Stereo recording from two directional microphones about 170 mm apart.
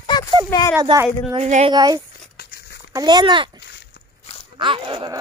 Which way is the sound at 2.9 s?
25° right (ahead or behind).